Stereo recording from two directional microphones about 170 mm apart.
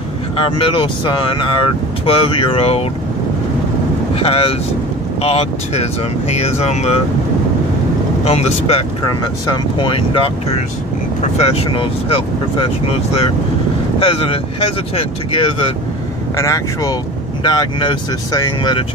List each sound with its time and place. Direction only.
0.4 s speech: 30° left (ahead or behind)
4.1 s speech: 35° left (ahead or behind)
8.2 s speech: 40° left (ahead or behind)
9.0 s speech: 25° left (ahead or behind)
11.3 s speech: 35° left (ahead or behind)
16.3 s speech: 20° left (ahead or behind)